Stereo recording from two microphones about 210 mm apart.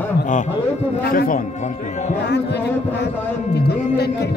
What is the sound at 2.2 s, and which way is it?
A woman's voice, 55° left (ahead or behind).